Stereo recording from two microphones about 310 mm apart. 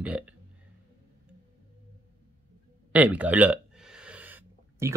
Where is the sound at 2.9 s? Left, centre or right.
Centre.